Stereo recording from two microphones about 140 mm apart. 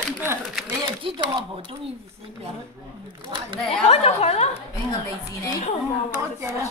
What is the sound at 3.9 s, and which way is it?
Speech, 50° left (ahead or behind).